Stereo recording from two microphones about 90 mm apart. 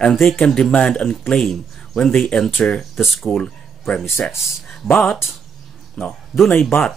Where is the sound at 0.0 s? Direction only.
5° left (ahead or behind).